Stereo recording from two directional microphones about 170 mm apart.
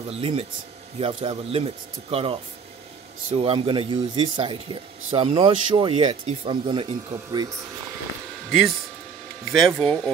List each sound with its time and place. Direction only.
0.1 s speech: 35° right (ahead or behind)
8.5 s speech: centre (ahead or behind)